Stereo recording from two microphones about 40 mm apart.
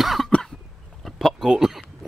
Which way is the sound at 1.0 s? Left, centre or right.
Centre.